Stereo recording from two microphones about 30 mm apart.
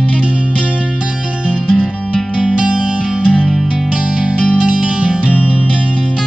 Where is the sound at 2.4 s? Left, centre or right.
Right.